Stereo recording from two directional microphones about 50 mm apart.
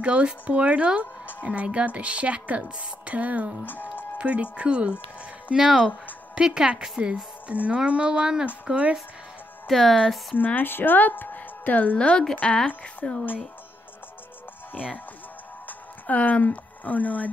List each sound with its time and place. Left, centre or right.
0.0 s a woman's voice: right
3.6 s speech: left
4.2 s a woman's voice: right
5.6 s a woman's voice: centre
9.7 s speech: centre
10.3 s speech: left
12.0 s a woman's voice: centre
16.1 s speech: left